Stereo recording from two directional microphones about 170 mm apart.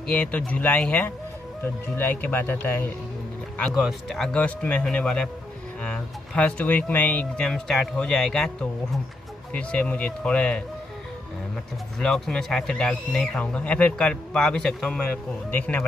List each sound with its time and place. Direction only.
0.0 s speech: 5° left (ahead or behind)
3.5 s speech: centre (ahead or behind)
12.0 s speech: 5° left (ahead or behind)